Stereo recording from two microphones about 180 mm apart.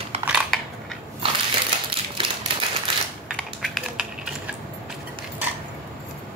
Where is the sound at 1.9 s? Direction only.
30° right (ahead or behind).